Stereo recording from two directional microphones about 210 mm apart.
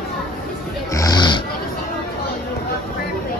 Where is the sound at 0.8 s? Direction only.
15° left (ahead or behind).